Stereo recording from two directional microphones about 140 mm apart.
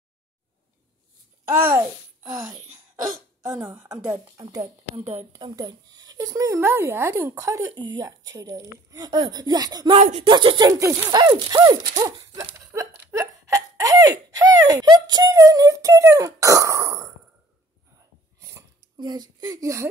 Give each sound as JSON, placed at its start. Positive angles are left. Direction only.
{"t": 1.5, "sound": "a child's voice", "side_deg": -15}
{"t": 1.8, "sound": "babbling", "side_deg": -25}
{"t": 2.7, "sound": "speech", "side_deg": -20}
{"t": 4.4, "sound": "speech", "side_deg": -25}
{"t": 12.5, "sound": "a sound", "side_deg": -20}
{"t": 18.4, "sound": "a sound", "side_deg": -20}
{"t": 18.9, "sound": "speech", "side_deg": -30}